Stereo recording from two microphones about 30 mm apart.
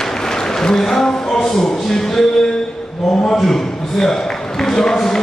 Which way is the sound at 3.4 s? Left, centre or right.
Centre.